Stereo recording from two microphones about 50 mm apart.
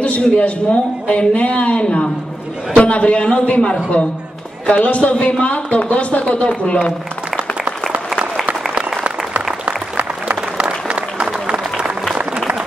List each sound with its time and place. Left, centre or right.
0.0 s a man's voice: left
8.1 s applause: centre
9.9 s applause: right; by 12.2 s centre